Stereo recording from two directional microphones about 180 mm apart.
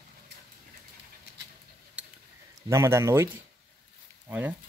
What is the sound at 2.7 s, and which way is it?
Speech, 15° right (ahead or behind).